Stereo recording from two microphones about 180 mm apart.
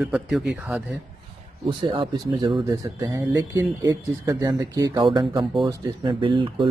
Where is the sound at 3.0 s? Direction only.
15° right (ahead or behind).